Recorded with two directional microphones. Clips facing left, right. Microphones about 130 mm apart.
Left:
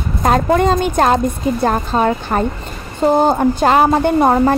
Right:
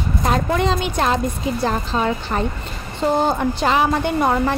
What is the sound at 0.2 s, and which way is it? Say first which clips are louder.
A woman's voice: left 7 dB; 50° left (ahead or behind).